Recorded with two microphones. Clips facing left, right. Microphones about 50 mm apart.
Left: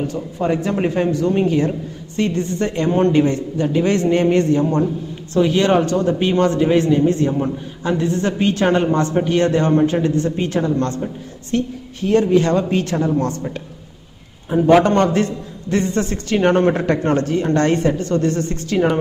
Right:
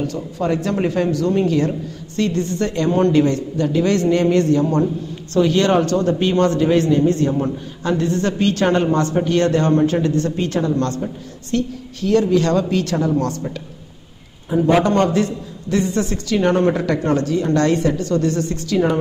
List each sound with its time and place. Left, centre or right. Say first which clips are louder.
0.0 s speech: left 1 dB; left
14.5 s a man's voice: left 3 dB; left